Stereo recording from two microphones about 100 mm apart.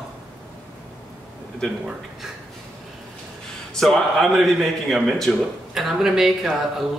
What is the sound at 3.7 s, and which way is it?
A man's voice, 5° left (ahead or behind).